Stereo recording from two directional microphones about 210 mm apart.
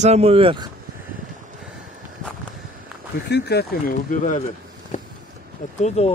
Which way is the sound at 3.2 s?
55° left (ahead or behind).